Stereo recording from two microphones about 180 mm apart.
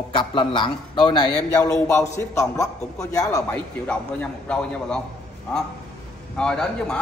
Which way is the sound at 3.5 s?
5° left (ahead or behind).